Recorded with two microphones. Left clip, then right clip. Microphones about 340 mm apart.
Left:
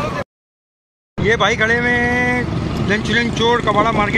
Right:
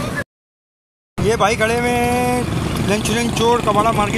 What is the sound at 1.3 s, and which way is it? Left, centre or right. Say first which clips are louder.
Speech: left 1 dB; centre.